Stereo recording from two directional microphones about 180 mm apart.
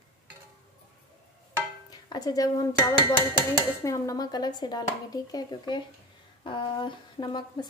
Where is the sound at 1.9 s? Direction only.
20° left (ahead or behind).